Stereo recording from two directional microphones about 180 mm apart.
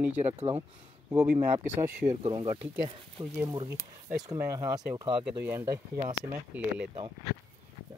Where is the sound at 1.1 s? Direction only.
10° right (ahead or behind).